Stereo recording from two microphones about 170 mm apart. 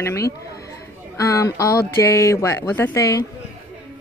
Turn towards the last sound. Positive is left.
turn(degrees=20)  # may be behind; listen again after turning